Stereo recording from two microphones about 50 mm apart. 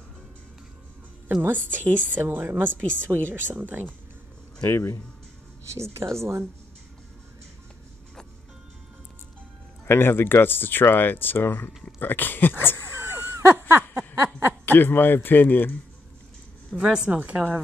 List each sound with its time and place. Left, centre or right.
1.4 s a woman's voice: right
4.6 s a man's voice: left
5.7 s speech: right
9.8 s speech: left
13.0 s a sound: right
14.7 s speech: left
16.7 s speech: centre
17.0 s a woman's voice: right